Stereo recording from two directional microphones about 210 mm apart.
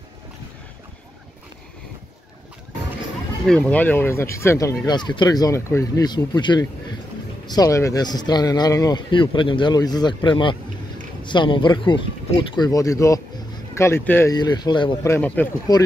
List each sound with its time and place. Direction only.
3.4 s speech: 5° left (ahead or behind); by 15.1 s 20° left (ahead or behind)
15.1 s speech: 10° left (ahead or behind)